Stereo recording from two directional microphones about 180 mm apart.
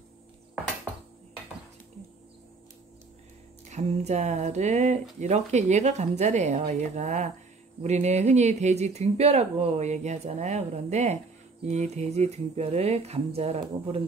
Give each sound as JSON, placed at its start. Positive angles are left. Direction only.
{"t": 3.6, "sound": "speech", "side_deg": -40}